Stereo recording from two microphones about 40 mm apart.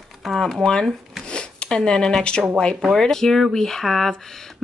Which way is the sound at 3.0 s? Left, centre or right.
Centre.